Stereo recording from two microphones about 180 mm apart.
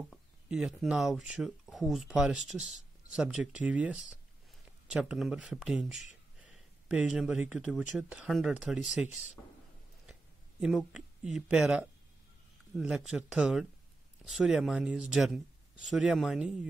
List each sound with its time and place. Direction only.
0.1 s speech: centre (ahead or behind)
10.6 s speech: centre (ahead or behind)